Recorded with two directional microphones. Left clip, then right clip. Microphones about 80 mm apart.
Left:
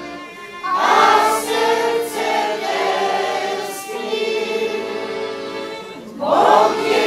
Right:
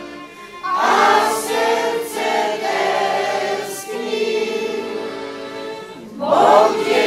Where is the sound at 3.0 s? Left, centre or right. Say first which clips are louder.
Right 1 dB; centre.